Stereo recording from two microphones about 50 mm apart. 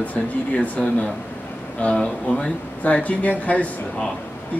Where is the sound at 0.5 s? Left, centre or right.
Left.